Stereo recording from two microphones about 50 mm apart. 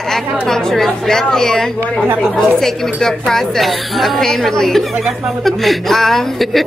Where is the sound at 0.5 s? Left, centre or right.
Centre.